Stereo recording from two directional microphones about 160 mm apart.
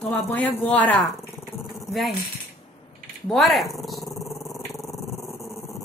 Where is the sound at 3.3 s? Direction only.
Centre (ahead or behind).